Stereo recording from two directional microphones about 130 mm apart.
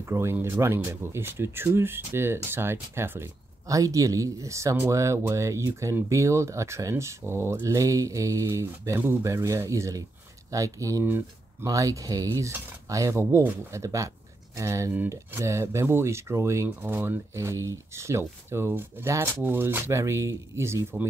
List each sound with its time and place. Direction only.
0.0 s speech: 20° right (ahead or behind)